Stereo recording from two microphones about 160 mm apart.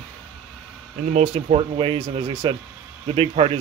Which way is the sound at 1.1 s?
45° right (ahead or behind).